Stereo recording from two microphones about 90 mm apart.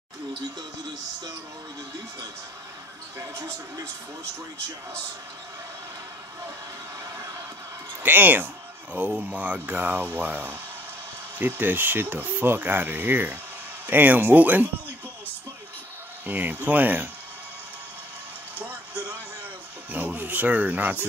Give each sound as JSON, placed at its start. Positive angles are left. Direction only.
{"t": 3.2, "sound": "a man's voice", "side_deg": -35}
{"t": 8.0, "sound": "speech", "side_deg": -20}
{"t": 16.3, "sound": "speech", "side_deg": -20}
{"t": 18.6, "sound": "a sound", "side_deg": -20}
{"t": 19.9, "sound": "speech", "side_deg": -20}